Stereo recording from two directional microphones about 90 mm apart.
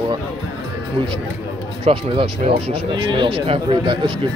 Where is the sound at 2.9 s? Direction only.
65° right (ahead or behind).